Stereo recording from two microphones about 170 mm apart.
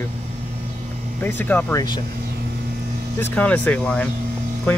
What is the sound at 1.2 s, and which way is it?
Speech, 10° left (ahead or behind).